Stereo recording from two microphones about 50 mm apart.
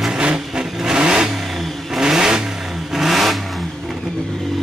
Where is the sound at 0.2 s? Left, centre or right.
Centre.